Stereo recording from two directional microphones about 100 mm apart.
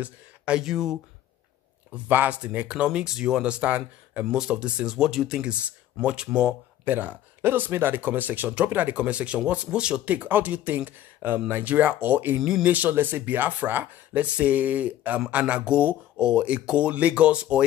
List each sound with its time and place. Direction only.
0.0 s speech: 10° right (ahead or behind)
2.0 s speech: 15° right (ahead or behind)
12.4 s speech: 5° right (ahead or behind)
12.6 s speech: 15° right (ahead or behind)